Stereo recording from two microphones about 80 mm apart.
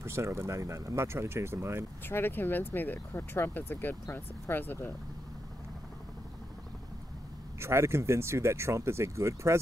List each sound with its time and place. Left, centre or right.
0.0 s speech: right
2.0 s speech: left
7.6 s speech: right